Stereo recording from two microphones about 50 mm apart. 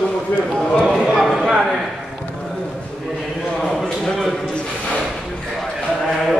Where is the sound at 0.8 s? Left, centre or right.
Centre.